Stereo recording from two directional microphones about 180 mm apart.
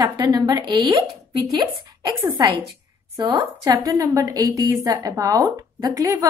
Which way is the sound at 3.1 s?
25° right (ahead or behind).